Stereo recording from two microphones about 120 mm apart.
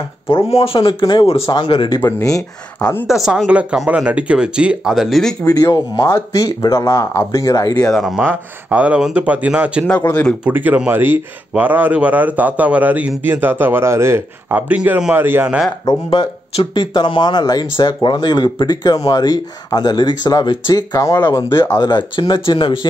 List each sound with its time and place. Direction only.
0.5 s speech: 55° left (ahead or behind); by 2.0 s 40° left (ahead or behind)
2.0 s speech: 20° left (ahead or behind)
2.8 s a woman's voice: 15° left (ahead or behind)
3.1 s speech: 5° right (ahead or behind)
5.4 s speech: 30° left (ahead or behind)
7.8 s speech: centre (ahead or behind)
8.3 s speech: 10° right (ahead or behind)
16.1 s speech: 45° left (ahead or behind); by 21.8 s 25° left (ahead or behind)
21.8 s speech: 40° left (ahead or behind)